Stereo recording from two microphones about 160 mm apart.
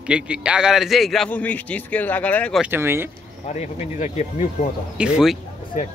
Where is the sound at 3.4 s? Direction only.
45° left (ahead or behind).